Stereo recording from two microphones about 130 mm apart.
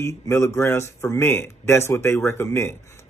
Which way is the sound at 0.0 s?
20° left (ahead or behind).